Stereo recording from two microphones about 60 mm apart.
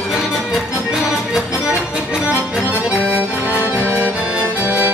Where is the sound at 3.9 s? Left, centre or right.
Centre.